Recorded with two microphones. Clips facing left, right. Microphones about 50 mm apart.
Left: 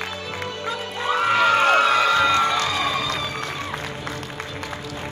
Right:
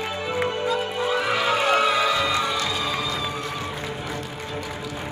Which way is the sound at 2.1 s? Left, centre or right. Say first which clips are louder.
Left 4 dB; left.